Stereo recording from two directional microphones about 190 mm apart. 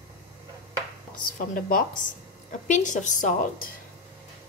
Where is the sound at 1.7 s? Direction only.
50° left (ahead or behind).